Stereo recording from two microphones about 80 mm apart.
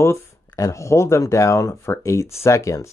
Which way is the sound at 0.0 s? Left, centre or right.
Left.